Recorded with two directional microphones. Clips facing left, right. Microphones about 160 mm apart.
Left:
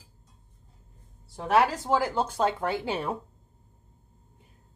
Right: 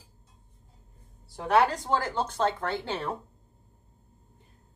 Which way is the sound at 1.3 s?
Centre (ahead or behind).